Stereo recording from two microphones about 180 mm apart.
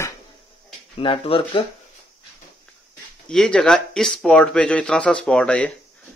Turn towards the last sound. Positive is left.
turn(degrees=5)  # may be behind; listen again after turning